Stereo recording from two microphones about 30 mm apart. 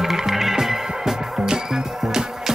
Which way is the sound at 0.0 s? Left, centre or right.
Centre.